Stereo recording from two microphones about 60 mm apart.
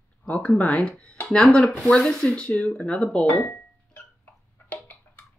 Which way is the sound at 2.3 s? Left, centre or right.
Centre.